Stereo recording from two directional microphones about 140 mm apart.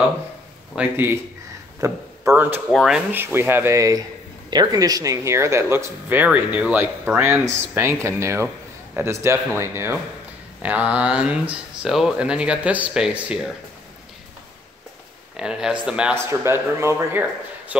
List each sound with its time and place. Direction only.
0.7 s a man's voice: 15° right (ahead or behind)
2.7 s speech: centre (ahead or behind)
3.1 s speech: 15° right (ahead or behind)
15.3 s speech: 5° right (ahead or behind)
16.3 s speech: 20° right (ahead or behind)